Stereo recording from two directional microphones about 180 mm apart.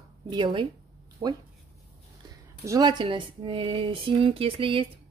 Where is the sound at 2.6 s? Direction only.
20° right (ahead or behind).